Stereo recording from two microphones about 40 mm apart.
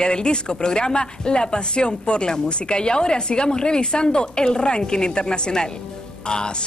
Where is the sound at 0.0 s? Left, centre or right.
Left.